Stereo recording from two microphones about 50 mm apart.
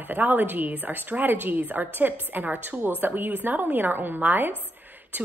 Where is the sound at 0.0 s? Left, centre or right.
Right.